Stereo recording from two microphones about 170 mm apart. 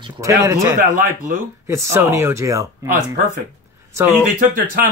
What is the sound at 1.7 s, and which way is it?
Speech, 15° right (ahead or behind).